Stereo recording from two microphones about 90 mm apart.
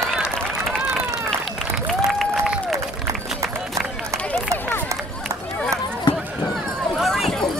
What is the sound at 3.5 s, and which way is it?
Run, 5° left (ahead or behind).